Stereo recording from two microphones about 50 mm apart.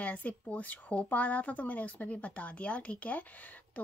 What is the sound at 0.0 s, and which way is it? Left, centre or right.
Speech, left.